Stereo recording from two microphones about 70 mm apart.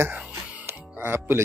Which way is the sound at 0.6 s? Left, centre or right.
Right.